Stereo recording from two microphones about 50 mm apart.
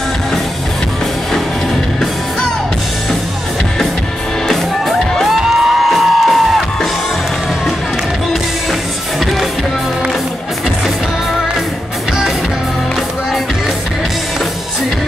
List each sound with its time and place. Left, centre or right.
4.5 s music: centre